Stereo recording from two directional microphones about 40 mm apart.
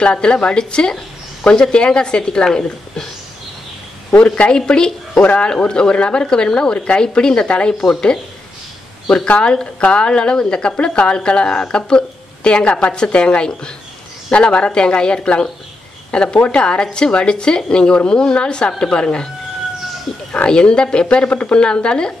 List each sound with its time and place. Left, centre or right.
0.0 s a woman's voice: left
4.2 s a woman's voice: left
5.1 s speech: left
5.4 s a woman's voice: left
20.4 s a woman's voice: left